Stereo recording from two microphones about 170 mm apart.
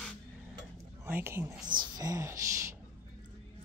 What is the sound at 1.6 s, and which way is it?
Speech, 25° right (ahead or behind).